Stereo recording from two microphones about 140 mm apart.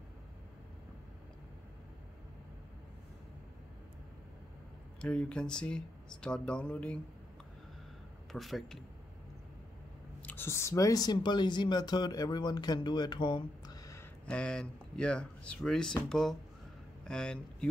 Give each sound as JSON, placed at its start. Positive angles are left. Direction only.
{"t": 5.0, "sound": "speech", "side_deg": 10}
{"t": 8.3, "sound": "speech", "side_deg": 0}
{"t": 10.2, "sound": "speech", "side_deg": 15}
{"t": 14.2, "sound": "speech", "side_deg": 5}